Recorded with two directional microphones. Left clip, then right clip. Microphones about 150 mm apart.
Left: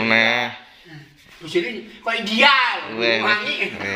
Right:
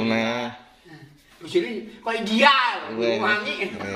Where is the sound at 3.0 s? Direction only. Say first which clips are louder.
Left 5 dB; centre (ahead or behind).